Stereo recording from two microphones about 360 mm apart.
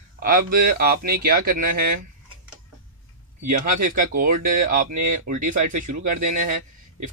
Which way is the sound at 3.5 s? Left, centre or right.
Right.